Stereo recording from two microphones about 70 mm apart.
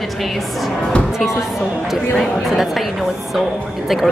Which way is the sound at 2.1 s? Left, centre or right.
Centre.